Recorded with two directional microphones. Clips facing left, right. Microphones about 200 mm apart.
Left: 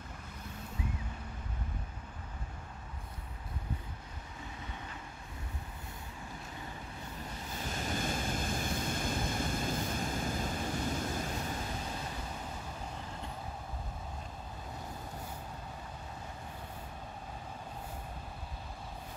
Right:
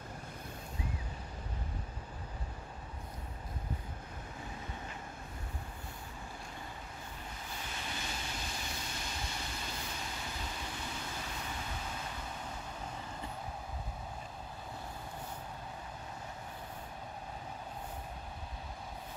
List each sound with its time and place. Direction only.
7.6 s vehicle: 45° left (ahead or behind)